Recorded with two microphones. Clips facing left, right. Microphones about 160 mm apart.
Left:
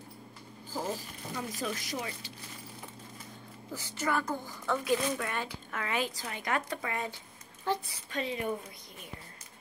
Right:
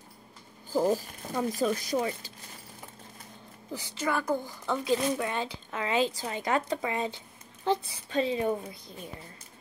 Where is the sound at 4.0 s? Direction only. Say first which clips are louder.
Right 3 dB; 15° right (ahead or behind).